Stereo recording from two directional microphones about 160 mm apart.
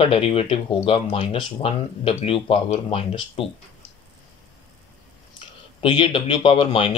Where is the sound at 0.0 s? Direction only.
35° left (ahead or behind).